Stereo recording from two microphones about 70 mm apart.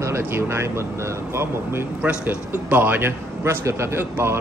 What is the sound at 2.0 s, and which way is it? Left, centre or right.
A man's voice, right.